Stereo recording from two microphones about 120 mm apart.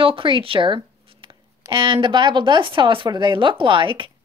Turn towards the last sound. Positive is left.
turn(degrees=-45)  # may be behind; listen again after turning